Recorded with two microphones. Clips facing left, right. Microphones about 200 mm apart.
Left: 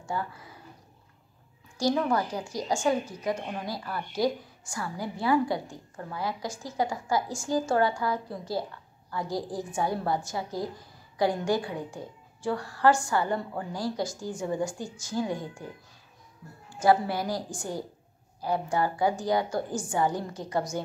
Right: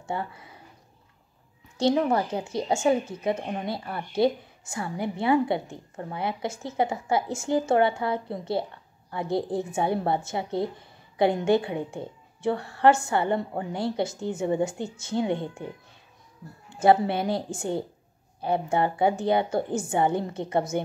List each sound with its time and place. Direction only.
0.1 s a woman's voice: 25° right (ahead or behind)
1.8 s a woman's voice: 25° right (ahead or behind)